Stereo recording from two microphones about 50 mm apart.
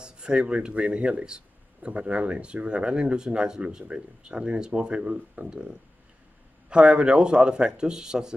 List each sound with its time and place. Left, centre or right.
0.0 s speech: centre
6.7 s speech: right